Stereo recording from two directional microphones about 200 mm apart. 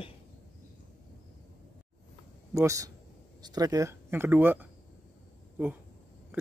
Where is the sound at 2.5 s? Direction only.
15° right (ahead or behind).